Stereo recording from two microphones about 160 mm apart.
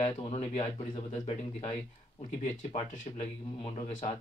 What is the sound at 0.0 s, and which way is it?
Speech, 35° left (ahead or behind).